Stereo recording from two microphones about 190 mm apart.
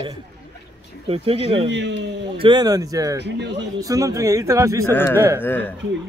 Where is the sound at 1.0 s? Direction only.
30° right (ahead or behind).